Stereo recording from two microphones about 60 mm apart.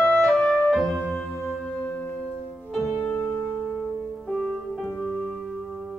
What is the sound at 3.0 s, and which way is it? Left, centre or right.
Music, left.